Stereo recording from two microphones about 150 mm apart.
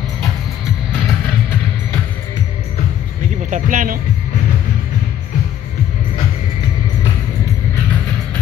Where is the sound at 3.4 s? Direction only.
55° right (ahead or behind).